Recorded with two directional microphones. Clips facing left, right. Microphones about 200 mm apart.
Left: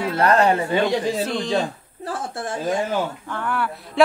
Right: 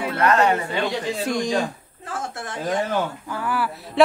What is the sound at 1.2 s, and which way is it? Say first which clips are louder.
Speech: even; 15° right (ahead or behind).